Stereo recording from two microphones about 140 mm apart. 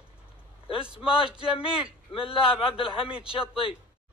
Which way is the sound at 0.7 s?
5° right (ahead or behind).